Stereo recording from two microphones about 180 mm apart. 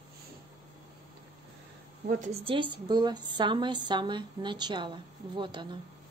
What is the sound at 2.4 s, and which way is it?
A woman's voice, 30° right (ahead or behind).